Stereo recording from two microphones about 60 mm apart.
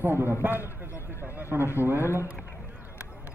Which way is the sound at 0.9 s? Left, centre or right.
Left.